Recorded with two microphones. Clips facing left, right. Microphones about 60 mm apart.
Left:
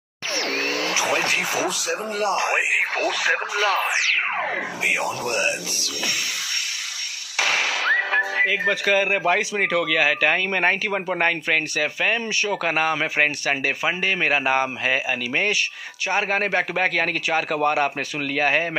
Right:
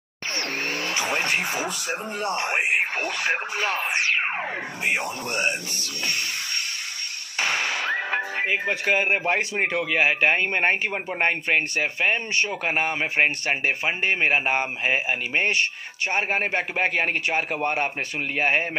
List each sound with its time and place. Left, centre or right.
0.4 s speech: left
7.3 s speech: left
16.2 s speech: left